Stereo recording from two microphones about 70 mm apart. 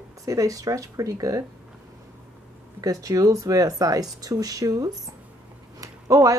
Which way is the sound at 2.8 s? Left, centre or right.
Right.